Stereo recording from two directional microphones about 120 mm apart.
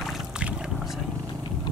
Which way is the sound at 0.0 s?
Centre (ahead or behind).